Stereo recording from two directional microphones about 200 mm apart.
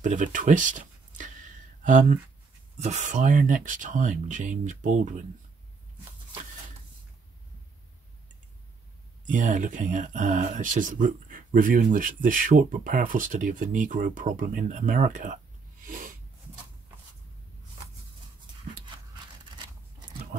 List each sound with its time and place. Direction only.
0.0 s speech: 40° right (ahead or behind)
9.2 s speech: 40° right (ahead or behind)
15.8 s snort: 45° right (ahead or behind)